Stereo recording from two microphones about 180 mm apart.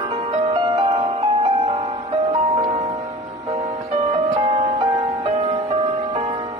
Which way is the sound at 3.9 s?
30° right (ahead or behind).